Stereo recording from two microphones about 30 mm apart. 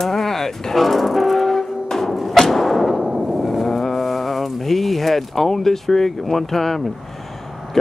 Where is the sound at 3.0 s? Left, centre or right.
Right.